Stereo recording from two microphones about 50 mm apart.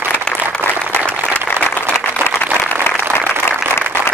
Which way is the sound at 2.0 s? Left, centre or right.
Left.